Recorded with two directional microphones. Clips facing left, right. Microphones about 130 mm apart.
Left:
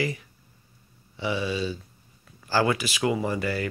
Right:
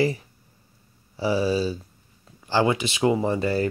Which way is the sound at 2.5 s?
20° right (ahead or behind).